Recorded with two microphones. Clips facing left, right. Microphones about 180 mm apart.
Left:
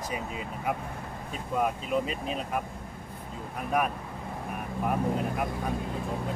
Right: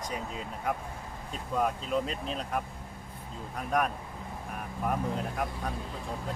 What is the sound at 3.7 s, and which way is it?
Speech, 5° left (ahead or behind).